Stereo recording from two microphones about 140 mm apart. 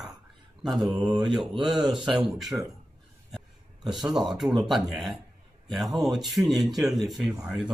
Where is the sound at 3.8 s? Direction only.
Centre (ahead or behind).